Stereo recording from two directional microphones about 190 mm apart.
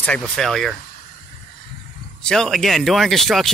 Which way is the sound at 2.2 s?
5° left (ahead or behind).